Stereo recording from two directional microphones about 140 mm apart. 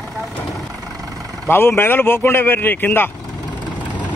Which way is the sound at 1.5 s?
15° left (ahead or behind).